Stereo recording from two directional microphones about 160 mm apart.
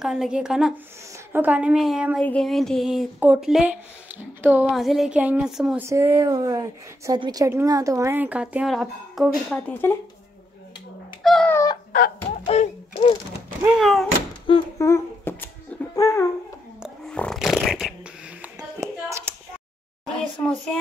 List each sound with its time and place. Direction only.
0.0 s a woman's voice: 5° right (ahead or behind)
5.9 s speech: 15° right (ahead or behind); by 9.9 s 10° left (ahead or behind)
11.2 s a woman's voice: 5° left (ahead or behind)
11.5 s a sound: 25° left (ahead or behind)
12.5 s speech: 45° left (ahead or behind)
13.7 s a woman's voice: centre (ahead or behind)
14.8 s babbling: 15° left (ahead or behind)
16.8 s a sound: 5° left (ahead or behind)
18.8 s hands: 15° right (ahead or behind)
20.1 s a child's voice: 5° left (ahead or behind)